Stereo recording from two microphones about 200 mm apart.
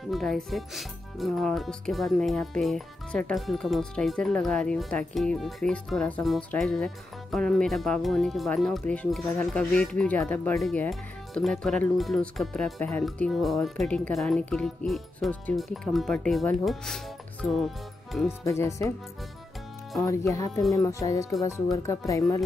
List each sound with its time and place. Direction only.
0.1 s speech: centre (ahead or behind)
18.4 s speech: 15° left (ahead or behind)
20.0 s speech: 15° left (ahead or behind)